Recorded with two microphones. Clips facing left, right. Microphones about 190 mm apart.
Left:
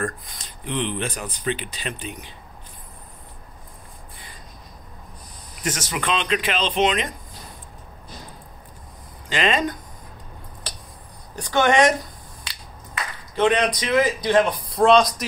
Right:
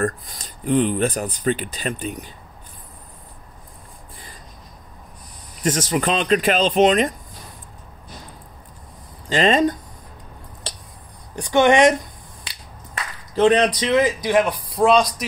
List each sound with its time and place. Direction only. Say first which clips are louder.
0.0 s speech: right 5 dB; 40° right (ahead or behind)
5.6 s speech: right 7 dB; 35° right (ahead or behind)
9.3 s speech: right 5 dB; 35° right (ahead or behind)
11.3 s speech: right 3 dB; 20° right (ahead or behind)
13.3 s speech: right 4 dB; 35° right (ahead or behind)
14.2 s speech: even; 10° right (ahead or behind)